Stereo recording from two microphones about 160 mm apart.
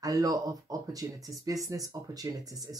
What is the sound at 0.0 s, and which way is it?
Speech, 20° right (ahead or behind).